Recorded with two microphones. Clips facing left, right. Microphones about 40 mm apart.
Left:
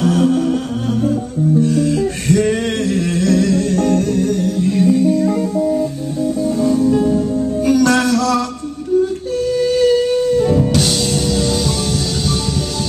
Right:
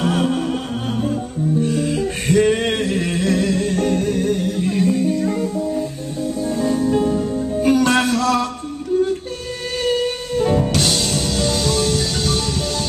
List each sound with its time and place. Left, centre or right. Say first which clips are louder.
0.0 s music: left 5 dB; right
1.6 s music: left 4 dB; right
4.7 s music: left 5 dB; centre
6.9 s music: left 3 dB; centre
7.6 s music: left 2 dB; right
9.6 s music: left 6 dB; right
10.7 s music: left 3 dB; centre